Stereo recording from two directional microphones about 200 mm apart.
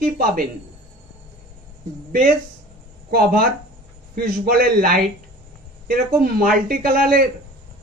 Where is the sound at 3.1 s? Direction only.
45° right (ahead or behind).